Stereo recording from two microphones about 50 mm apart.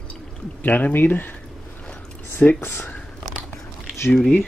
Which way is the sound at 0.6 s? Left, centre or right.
Left.